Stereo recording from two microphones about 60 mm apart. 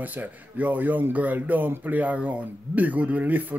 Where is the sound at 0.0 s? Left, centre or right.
Right.